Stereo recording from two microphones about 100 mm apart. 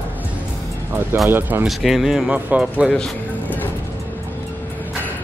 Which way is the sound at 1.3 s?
20° right (ahead or behind).